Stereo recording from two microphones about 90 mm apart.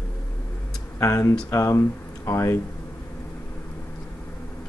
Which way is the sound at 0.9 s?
35° left (ahead or behind).